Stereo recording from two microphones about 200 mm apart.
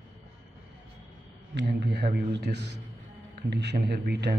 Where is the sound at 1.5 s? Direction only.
60° right (ahead or behind).